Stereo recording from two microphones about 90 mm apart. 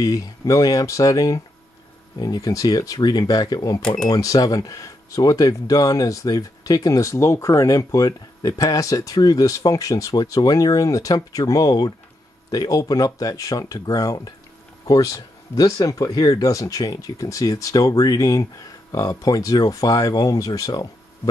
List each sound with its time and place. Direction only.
0.0 s speech: 40° left (ahead or behind)